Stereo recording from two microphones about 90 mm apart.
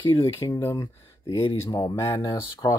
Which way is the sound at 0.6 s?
35° left (ahead or behind).